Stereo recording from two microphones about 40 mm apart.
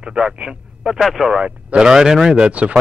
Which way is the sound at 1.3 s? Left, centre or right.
Right.